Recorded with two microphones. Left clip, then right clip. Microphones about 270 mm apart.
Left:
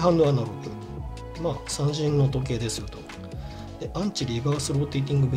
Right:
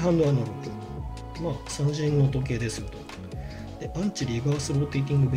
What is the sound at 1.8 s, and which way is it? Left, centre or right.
Speech, centre.